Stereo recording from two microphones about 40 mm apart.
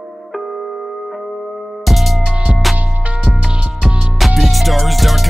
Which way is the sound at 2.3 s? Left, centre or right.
Right.